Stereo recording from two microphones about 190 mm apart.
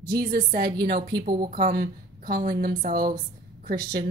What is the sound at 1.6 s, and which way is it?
A woman's voice, 50° right (ahead or behind).